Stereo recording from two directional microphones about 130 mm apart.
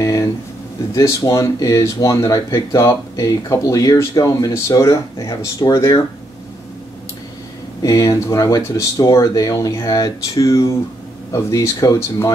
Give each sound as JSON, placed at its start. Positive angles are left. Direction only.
{"t": 0.0, "sound": "a sound", "side_deg": 25}
{"t": 0.9, "sound": "speech", "side_deg": 25}
{"t": 7.8, "sound": "speech", "side_deg": 25}